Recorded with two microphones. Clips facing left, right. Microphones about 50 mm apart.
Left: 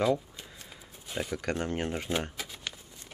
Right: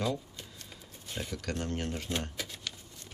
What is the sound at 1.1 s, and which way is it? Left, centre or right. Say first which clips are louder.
Speech: left 5 dB; left.